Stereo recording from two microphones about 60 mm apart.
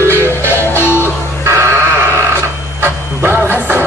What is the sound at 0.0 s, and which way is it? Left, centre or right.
Music, right.